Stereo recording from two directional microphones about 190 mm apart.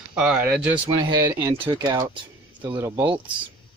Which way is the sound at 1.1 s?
20° right (ahead or behind).